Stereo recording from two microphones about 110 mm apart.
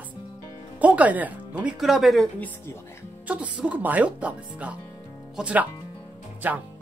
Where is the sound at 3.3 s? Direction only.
10° right (ahead or behind).